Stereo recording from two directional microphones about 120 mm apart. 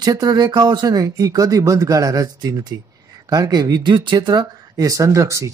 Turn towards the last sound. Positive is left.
turn(degrees=-25)  # may be behind; listen again after turning